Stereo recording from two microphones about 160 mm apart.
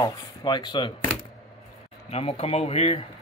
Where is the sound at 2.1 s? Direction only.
40° left (ahead or behind).